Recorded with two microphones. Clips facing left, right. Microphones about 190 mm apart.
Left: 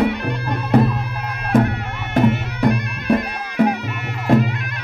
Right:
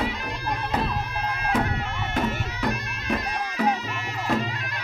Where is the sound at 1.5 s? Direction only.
55° left (ahead or behind).